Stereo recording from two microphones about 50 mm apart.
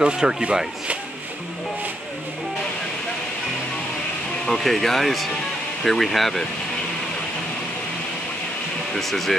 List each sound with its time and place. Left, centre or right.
0.0 s speech: centre
4.5 s speech: centre
8.9 s speech: centre